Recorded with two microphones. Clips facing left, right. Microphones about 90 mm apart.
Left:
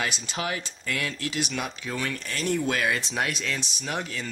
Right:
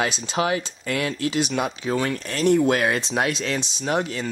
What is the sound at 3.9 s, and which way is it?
Speech, 40° right (ahead or behind).